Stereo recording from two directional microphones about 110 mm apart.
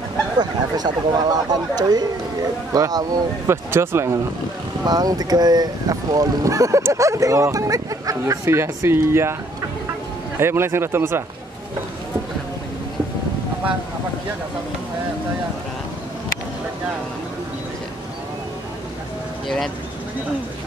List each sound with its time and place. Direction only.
0.4 s speech: 40° right (ahead or behind)
3.4 s speech: 20° right (ahead or behind)
4.8 s speech: 35° right (ahead or behind)
10.4 s speech: 20° right (ahead or behind)